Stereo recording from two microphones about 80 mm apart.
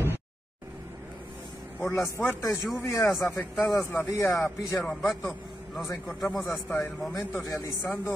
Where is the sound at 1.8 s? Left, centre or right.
Left.